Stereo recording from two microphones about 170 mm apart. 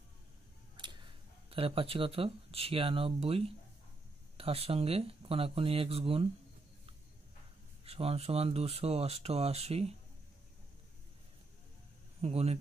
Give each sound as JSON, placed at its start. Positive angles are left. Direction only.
{"t": 0.7, "sound": "speech", "side_deg": -25}
{"t": 7.8, "sound": "speech", "side_deg": -35}
{"t": 12.2, "sound": "speech", "side_deg": -35}